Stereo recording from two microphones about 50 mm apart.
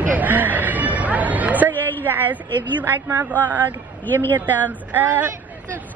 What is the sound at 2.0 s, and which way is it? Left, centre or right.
A woman's voice, right.